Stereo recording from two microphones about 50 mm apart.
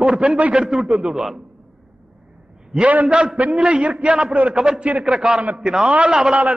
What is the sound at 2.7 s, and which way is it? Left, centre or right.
Speech, right.